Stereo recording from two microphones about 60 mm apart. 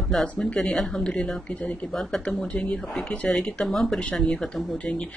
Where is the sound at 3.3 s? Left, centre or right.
Centre.